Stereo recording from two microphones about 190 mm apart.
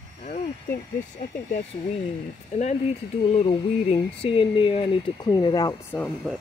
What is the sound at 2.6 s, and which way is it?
Speech, 40° left (ahead or behind).